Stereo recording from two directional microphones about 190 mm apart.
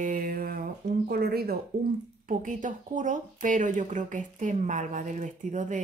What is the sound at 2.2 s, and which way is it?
Speech, 45° right (ahead or behind).